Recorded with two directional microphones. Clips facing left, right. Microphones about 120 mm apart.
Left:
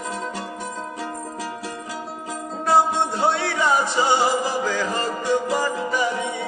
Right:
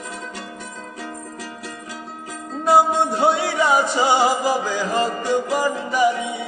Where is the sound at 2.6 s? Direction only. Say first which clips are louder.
Right 3 dB; 15° right (ahead or behind).